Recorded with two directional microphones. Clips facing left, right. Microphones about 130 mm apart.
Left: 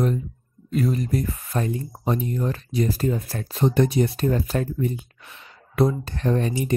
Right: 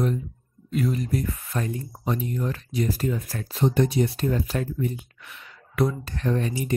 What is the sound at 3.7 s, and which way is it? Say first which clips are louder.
Speech: left 3 dB; 55° left (ahead or behind).